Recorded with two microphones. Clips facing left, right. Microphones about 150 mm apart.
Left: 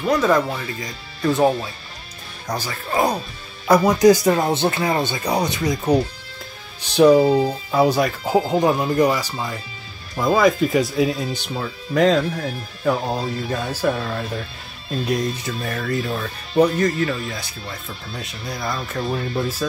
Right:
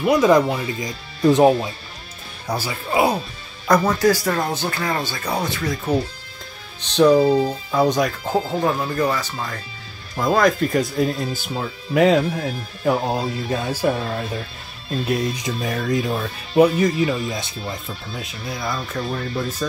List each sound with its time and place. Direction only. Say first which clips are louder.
0.0 s speech: right 3 dB; 10° right (ahead or behind)
3.6 s speech: left 3 dB; 10° left (ahead or behind); by 17.2 s 10° right (ahead or behind)
17.3 s speech: right 4 dB; 20° right (ahead or behind)
17.8 s speech: right 1 dB; centre (ahead or behind)